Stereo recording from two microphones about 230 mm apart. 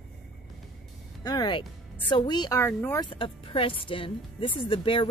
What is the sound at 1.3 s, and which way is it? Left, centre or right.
Speech, centre.